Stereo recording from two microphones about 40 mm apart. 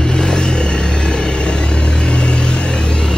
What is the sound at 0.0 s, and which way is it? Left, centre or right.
Vehicle, centre.